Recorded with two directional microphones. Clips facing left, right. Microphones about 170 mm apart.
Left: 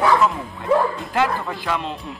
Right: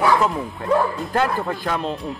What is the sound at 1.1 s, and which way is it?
Speech, 45° right (ahead or behind).